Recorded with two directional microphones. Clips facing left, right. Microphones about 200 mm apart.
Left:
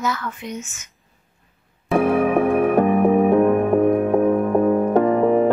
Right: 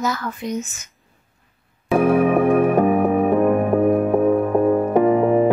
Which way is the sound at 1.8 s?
Centre (ahead or behind).